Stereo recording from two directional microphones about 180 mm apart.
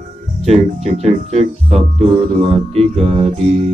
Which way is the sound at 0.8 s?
35° right (ahead or behind).